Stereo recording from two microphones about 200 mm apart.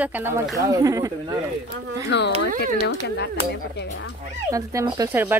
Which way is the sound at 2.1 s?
60° left (ahead or behind).